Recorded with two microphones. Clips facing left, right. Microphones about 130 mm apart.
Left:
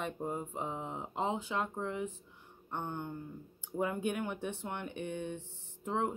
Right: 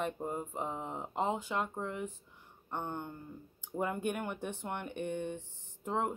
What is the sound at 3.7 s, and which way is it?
Speech, 5° right (ahead or behind).